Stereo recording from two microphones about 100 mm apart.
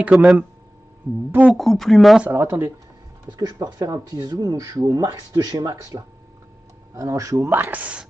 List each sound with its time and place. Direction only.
0.0 s speech: 5° right (ahead or behind)
1.6 s speech: 5° left (ahead or behind)
2.2 s speech: 25° right (ahead or behind)
3.3 s speech: 40° right (ahead or behind); by 8.1 s 10° right (ahead or behind)